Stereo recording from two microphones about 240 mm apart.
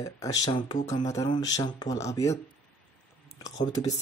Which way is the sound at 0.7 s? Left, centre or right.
Left.